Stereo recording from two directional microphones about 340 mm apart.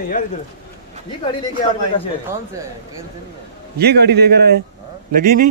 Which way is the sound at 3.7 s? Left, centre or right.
Right.